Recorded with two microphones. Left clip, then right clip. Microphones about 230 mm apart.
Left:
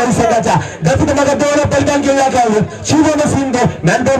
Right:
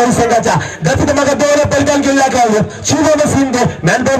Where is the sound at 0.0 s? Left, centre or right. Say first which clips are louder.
Right 1 dB; right.